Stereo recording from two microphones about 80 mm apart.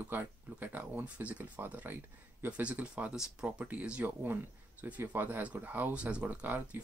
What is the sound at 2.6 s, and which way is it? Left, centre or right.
Speech, centre.